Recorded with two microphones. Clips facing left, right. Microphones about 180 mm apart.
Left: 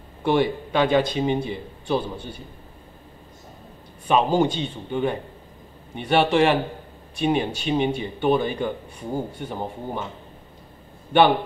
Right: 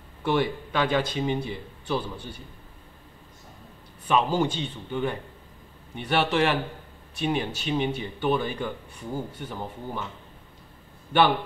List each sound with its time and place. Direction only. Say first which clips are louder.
0.2 s a man's voice: left 4 dB; 20° left (ahead or behind)
4.1 s a man's voice: left 4 dB; 25° left (ahead or behind)
11.1 s a man's voice: left 4 dB; 25° left (ahead or behind)